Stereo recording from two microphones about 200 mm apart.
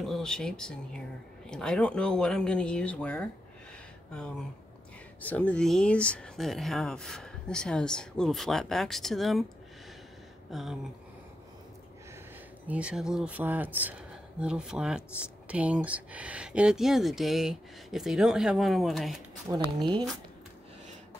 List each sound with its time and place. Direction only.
0.0 s speech: centre (ahead or behind)
5.2 s speech: 10° left (ahead or behind)
10.5 s speech: centre (ahead or behind)
12.6 s speech: 5° right (ahead or behind)
19.5 s speech: 15° right (ahead or behind)